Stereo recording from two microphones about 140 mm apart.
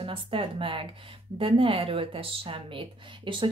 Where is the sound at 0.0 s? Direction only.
40° right (ahead or behind).